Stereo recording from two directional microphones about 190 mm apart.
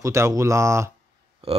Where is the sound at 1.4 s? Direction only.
30° right (ahead or behind).